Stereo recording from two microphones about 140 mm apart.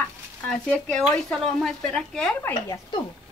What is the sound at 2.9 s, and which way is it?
Speech, 35° left (ahead or behind).